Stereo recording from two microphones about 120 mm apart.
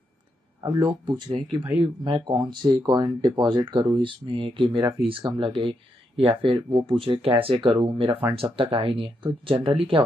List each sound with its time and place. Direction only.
0.6 s speech: 30° right (ahead or behind)
1.6 s speech: 15° right (ahead or behind)
2.0 s speech: 40° right (ahead or behind)